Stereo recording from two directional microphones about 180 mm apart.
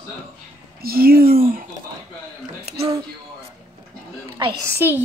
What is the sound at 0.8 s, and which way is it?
Speech, 55° right (ahead or behind).